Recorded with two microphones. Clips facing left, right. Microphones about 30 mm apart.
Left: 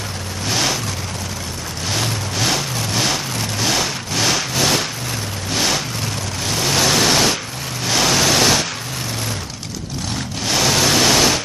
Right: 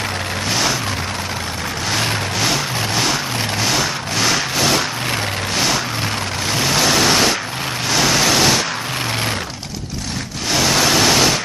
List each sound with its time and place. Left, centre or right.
0.5 s vehicle: centre
1.9 s vehicle: centre
2.5 s vehicle: centre
10.5 s vehicle: centre